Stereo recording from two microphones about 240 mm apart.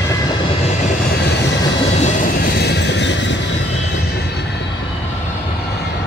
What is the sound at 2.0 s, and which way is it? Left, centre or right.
Train, left.